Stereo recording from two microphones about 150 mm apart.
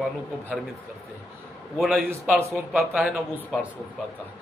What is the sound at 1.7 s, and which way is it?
A man's voice, centre (ahead or behind).